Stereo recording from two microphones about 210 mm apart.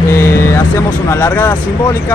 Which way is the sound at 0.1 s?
10° left (ahead or behind).